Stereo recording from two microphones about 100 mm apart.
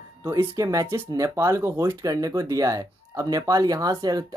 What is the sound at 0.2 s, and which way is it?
Speech, 25° right (ahead or behind).